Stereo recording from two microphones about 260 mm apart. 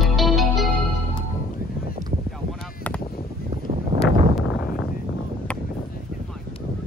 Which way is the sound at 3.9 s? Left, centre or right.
Centre.